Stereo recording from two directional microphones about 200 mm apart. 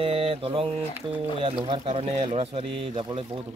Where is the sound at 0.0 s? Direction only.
30° right (ahead or behind).